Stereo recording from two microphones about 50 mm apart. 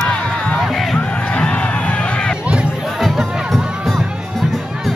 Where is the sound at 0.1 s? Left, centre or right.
Left.